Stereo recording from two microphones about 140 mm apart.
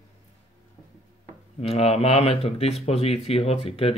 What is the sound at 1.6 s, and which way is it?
Speech, 45° left (ahead or behind).